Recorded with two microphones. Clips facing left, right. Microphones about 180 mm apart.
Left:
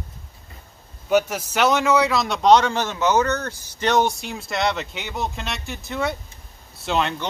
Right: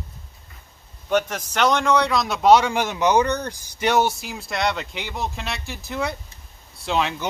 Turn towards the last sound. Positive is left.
turn(degrees=0)  # may be behind; listen again after turning